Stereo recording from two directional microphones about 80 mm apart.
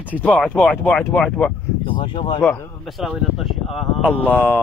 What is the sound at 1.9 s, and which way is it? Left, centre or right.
Speech, left.